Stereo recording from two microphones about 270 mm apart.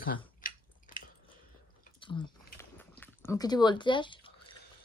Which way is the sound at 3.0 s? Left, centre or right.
Centre.